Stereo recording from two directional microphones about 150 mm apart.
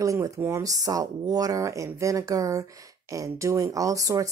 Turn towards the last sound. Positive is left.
turn(degrees=-20)  # may be behind; listen again after turning